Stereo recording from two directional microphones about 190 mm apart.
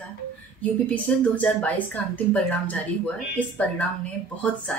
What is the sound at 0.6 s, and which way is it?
A woman's voice, 5° left (ahead or behind).